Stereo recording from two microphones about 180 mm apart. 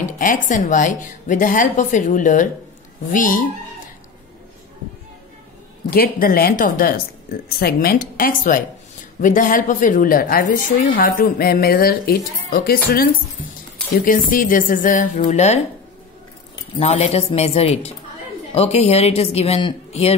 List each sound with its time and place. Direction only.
0.0 s a woman's voice: 50° left (ahead or behind)
5.9 s a woman's voice: 55° left (ahead or behind); by 15.6 s 40° left (ahead or behind)
16.7 s a woman's voice: 35° left (ahead or behind)